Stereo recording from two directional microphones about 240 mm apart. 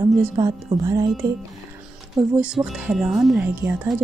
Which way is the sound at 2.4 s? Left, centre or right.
Centre.